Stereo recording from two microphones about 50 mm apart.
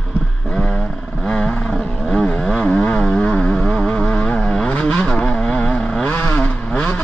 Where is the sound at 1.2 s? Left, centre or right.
Left.